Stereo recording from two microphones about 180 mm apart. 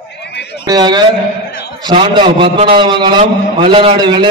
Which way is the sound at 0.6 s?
25° right (ahead or behind).